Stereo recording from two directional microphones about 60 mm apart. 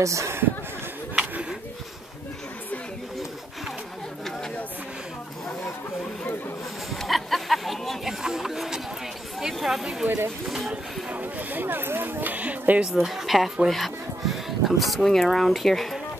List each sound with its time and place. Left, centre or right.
0.0 s speech: right
6.9 s a sound: centre
9.4 s speech: centre
10.0 s speech: right
10.7 s speech: right
12.9 s speech: centre